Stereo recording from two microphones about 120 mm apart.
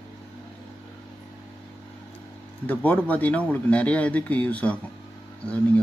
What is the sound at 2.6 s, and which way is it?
Speech, 15° left (ahead or behind).